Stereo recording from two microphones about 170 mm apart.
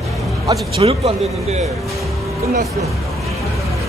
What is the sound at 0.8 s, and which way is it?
Speech, 35° right (ahead or behind).